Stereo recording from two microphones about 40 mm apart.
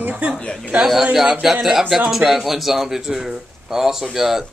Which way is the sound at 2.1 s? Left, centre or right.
Centre.